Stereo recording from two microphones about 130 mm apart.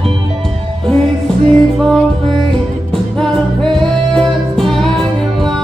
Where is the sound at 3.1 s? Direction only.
5° left (ahead or behind).